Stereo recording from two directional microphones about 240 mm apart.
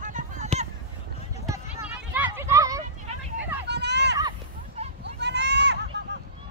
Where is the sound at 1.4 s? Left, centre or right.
Centre.